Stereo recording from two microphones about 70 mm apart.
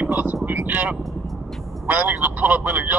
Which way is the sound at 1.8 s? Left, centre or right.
Right.